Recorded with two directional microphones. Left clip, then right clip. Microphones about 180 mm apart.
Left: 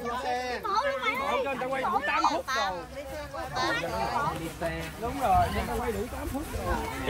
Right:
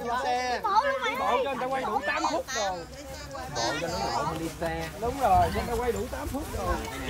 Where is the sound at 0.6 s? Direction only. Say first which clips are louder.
Right 2 dB; 40° right (ahead or behind).